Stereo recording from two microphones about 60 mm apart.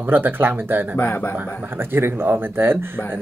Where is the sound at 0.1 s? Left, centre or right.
Right.